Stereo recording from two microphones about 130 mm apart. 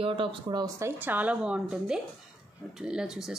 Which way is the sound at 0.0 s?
40° right (ahead or behind).